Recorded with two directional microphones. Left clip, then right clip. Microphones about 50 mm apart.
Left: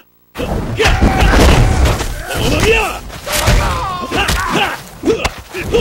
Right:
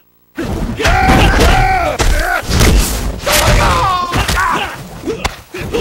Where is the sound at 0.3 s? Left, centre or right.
Left.